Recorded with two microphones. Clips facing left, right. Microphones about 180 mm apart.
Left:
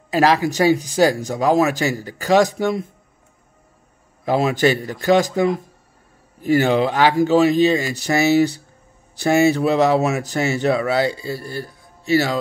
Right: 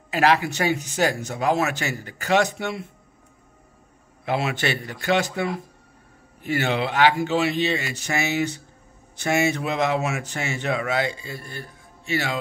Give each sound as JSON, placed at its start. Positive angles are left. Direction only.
{"t": 0.1, "sound": "speech", "side_deg": 35}
{"t": 4.2, "sound": "speech", "side_deg": 40}